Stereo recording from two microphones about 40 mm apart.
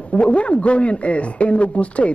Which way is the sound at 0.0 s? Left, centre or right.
Left.